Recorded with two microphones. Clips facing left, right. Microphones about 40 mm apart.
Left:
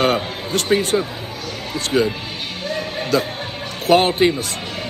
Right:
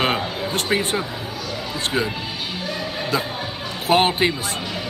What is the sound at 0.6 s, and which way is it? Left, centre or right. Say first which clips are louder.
Speech: left 4 dB; right.